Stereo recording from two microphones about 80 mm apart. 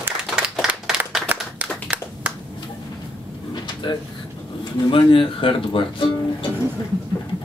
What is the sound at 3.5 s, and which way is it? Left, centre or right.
Drawer open or close, left.